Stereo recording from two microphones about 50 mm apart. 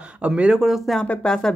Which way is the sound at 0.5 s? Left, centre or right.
Centre.